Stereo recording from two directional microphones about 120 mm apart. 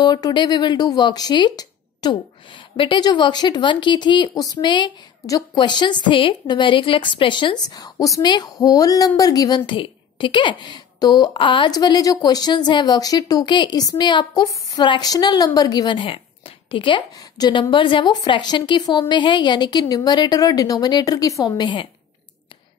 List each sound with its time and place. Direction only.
0.0 s speech: 40° left (ahead or behind)
9.7 s speech: 45° left (ahead or behind)